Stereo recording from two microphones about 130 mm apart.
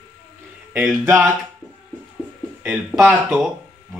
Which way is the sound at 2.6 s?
5° right (ahead or behind).